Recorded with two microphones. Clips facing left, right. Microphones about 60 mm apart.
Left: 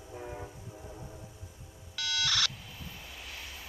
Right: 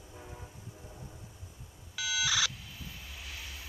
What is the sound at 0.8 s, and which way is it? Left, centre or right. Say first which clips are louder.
Train: left 4 dB; centre.